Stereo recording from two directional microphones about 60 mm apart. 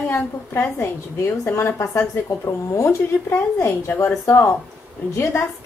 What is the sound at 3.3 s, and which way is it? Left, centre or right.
Speech, left.